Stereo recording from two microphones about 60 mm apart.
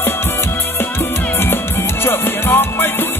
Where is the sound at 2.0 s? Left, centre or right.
Left.